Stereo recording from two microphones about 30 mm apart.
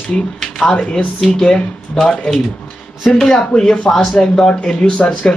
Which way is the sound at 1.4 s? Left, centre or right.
Left.